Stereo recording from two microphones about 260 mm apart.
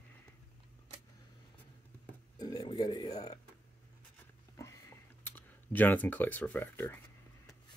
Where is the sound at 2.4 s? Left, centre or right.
Centre.